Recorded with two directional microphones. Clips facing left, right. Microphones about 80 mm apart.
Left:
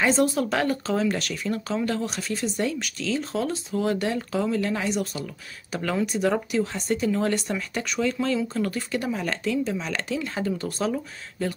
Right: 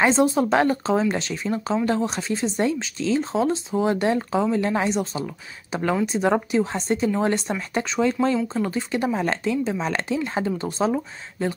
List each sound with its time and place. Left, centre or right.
0.2 s speech: right